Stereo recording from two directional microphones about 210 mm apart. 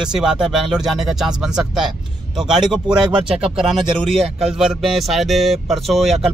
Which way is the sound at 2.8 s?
20° right (ahead or behind).